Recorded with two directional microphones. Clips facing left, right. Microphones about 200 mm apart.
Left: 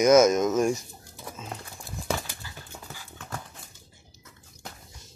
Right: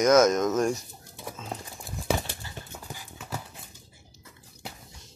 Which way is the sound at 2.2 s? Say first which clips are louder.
Right 3 dB; 25° right (ahead or behind).